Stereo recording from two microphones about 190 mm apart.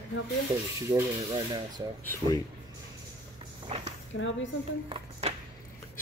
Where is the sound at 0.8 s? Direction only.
20° right (ahead or behind).